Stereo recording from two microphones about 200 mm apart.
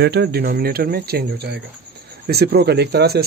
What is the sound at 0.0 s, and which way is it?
Speech, 55° right (ahead or behind).